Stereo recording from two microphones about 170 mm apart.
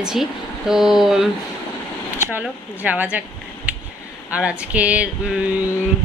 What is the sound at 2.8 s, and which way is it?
Speech, 10° right (ahead or behind).